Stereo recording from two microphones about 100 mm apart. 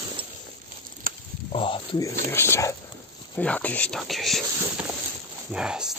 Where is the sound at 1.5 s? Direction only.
60° left (ahead or behind).